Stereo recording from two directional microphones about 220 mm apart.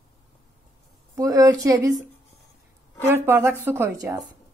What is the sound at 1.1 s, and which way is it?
Speech, 15° right (ahead or behind).